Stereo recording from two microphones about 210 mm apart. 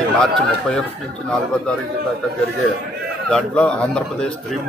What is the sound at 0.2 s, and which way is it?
Speech, 5° left (ahead or behind).